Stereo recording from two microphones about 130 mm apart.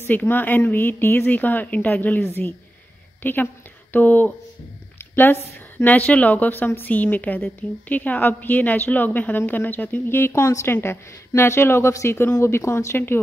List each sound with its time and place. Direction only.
0.0 s a woman's voice: 15° left (ahead or behind)